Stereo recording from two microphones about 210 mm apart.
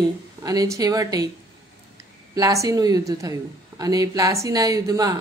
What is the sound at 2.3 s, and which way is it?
A woman's voice, 15° right (ahead or behind).